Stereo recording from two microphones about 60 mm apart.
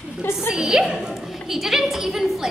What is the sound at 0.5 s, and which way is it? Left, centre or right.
A woman's voice, centre.